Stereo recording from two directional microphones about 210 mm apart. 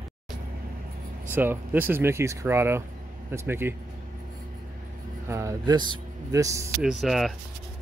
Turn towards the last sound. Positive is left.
turn(degrees=0)  # may be behind; listen again after turning